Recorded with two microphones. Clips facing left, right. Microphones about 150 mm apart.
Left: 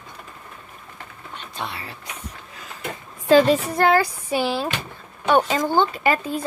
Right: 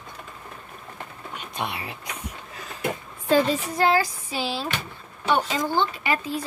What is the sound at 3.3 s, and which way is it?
Speech, 80° left.